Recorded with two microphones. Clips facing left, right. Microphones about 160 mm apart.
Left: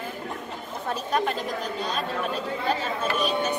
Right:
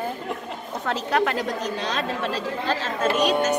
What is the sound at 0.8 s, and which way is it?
Speech, 90° right.